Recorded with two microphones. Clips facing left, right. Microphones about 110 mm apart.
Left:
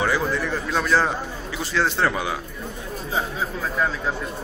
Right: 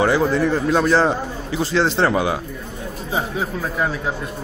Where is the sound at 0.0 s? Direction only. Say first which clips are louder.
Right 6 dB; 35° right (ahead or behind).